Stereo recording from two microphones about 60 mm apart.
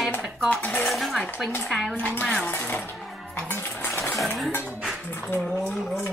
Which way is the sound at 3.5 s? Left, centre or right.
Left.